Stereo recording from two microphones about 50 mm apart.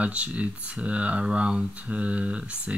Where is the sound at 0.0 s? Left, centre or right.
Right.